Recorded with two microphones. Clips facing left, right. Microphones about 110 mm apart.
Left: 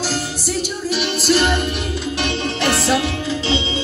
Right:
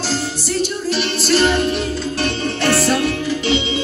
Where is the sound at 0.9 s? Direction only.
10° left (ahead or behind).